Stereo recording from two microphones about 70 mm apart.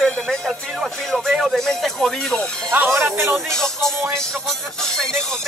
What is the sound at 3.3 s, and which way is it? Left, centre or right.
Music, centre.